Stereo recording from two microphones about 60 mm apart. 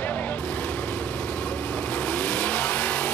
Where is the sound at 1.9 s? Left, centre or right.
Left.